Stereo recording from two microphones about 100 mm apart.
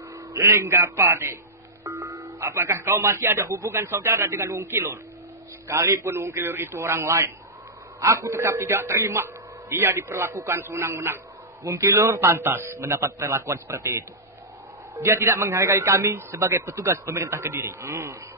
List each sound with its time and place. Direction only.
0.3 s a man's voice: 25° right (ahead or behind)
2.1 s a man's voice: 30° right (ahead or behind)